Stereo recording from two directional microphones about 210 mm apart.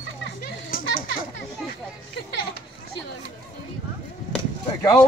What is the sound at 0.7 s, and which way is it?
Speech, 40° left (ahead or behind).